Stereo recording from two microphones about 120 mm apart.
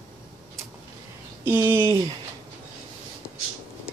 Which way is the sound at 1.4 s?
20° right (ahead or behind).